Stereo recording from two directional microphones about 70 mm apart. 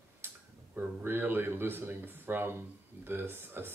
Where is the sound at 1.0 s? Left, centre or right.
Right.